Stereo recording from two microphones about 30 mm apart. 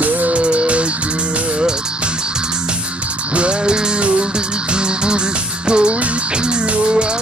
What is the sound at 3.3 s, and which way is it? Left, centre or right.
Music, right.